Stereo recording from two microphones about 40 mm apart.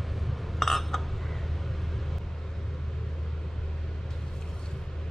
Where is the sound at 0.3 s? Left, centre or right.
Centre.